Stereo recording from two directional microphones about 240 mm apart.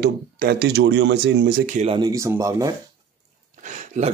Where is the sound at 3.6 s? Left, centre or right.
Right.